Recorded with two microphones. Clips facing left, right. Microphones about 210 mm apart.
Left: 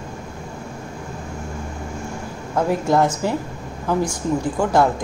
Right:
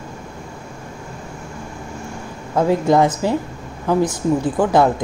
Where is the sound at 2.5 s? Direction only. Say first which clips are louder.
Right 3 dB; 10° right (ahead or behind).